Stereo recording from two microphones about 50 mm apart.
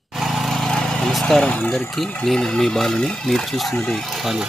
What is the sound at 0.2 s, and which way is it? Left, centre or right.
Lawn mower, centre.